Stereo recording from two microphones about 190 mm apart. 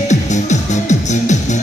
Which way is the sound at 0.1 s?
40° left (ahead or behind).